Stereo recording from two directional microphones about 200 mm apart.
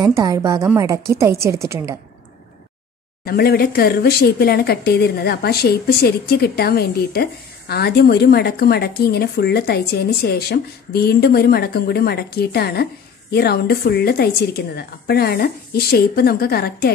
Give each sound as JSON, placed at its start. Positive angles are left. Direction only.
{"t": 0.0, "sound": "a woman's voice", "side_deg": -20}
{"t": 3.3, "sound": "speech", "side_deg": 50}